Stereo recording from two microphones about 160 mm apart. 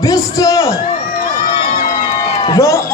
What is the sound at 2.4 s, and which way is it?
Speech, 20° left (ahead or behind).